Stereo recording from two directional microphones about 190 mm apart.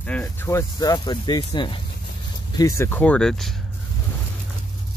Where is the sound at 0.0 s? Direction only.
5° left (ahead or behind).